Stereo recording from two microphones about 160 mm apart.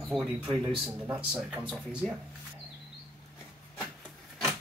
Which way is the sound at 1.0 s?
10° right (ahead or behind).